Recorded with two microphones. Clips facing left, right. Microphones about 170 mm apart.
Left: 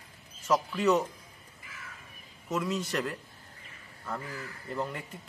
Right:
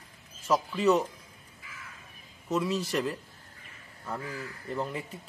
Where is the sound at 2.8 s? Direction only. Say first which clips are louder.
Right 3 dB; 5° right (ahead or behind).